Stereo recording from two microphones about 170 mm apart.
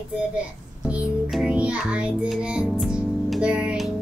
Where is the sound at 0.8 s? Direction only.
5° right (ahead or behind).